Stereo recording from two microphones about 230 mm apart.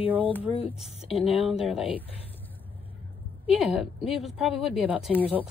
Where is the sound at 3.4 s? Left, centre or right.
Centre.